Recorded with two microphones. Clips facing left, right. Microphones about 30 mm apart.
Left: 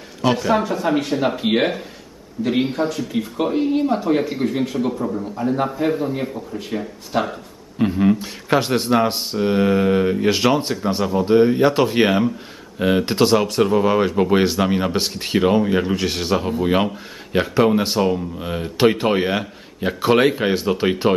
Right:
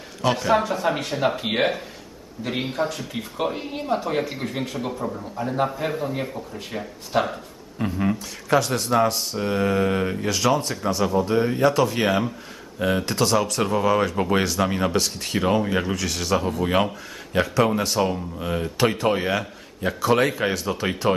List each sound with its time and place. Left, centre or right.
0.2 s speech: centre
7.8 s a man's voice: left
9.8 s speech: centre
10.2 s a man's voice: left
11.7 s a man's voice: left
13.6 s speech: centre
14.4 s a man's voice: left
15.0 s a man's voice: left
15.4 s speech: centre
16.0 s a man's voice: left
16.3 s speech: centre
17.3 s speech: left
17.9 s speech: centre
18.8 s a man's voice: left